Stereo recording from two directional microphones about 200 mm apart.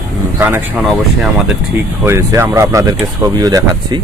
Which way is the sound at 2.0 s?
10° right (ahead or behind).